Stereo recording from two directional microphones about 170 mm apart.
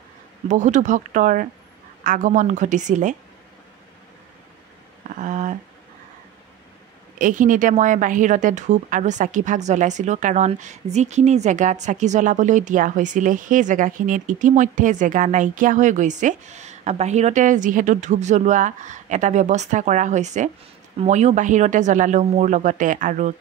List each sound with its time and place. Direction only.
0.5 s a woman's voice: 45° right (ahead or behind)
5.2 s speech: 50° right (ahead or behind)
7.2 s a woman's voice: 50° right (ahead or behind)